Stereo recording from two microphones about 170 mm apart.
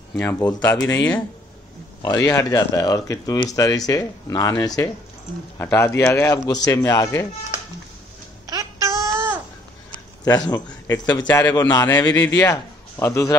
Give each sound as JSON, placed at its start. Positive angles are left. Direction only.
{"t": 0.1, "sound": "speech", "side_deg": 10}
{"t": 8.5, "sound": "babbling", "side_deg": -20}
{"t": 10.2, "sound": "speech", "side_deg": 20}
{"t": 11.2, "sound": "speech", "side_deg": 10}